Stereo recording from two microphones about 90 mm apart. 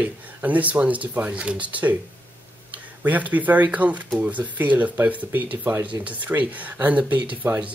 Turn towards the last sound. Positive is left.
turn(degrees=-30)  # may be behind; listen again after turning